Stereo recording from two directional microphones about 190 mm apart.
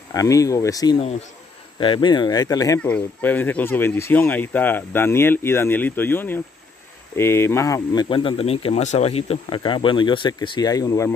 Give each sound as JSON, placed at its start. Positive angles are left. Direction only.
{"t": 0.1, "sound": "speech", "side_deg": 20}
{"t": 2.8, "sound": "speech", "side_deg": 10}